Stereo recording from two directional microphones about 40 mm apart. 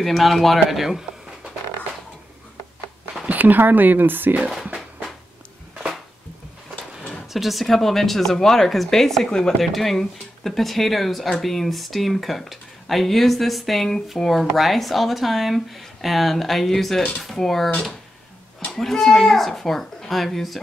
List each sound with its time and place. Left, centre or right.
0.0 s speech: centre
3.3 s speech: right
4.4 s speech: centre
7.3 s speech: centre
18.7 s speech: centre